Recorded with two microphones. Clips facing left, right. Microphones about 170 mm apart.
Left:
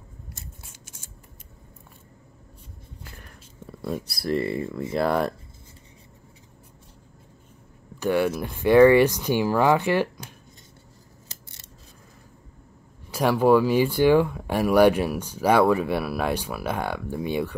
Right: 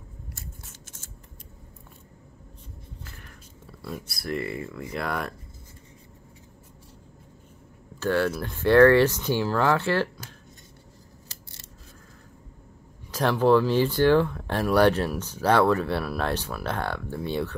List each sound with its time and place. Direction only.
0.4 s scissors: 10° left (ahead or behind)
3.8 s speech: 40° left (ahead or behind)
8.0 s speech: 15° left (ahead or behind)
13.1 s speech: 10° left (ahead or behind)